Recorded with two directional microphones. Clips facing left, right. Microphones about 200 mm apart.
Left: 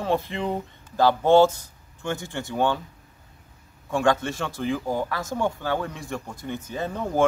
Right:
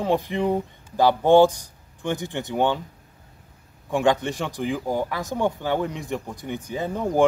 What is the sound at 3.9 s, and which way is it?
Speech, 15° right (ahead or behind).